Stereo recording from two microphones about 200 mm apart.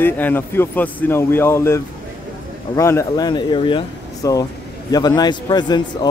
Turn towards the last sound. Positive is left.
turn(degrees=20)  # may be behind; listen again after turning